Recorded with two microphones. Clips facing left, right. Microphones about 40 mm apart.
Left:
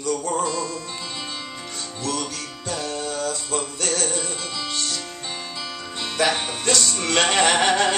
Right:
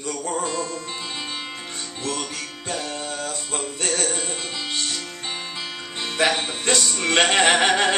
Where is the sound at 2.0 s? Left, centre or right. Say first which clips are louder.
Left 1 dB; right.